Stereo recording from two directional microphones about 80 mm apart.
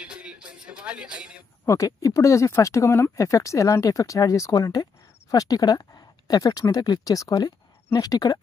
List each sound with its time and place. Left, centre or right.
0.0 s music: centre
1.7 s speech: left